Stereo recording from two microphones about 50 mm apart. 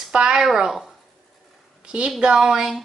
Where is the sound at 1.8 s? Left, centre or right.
Centre.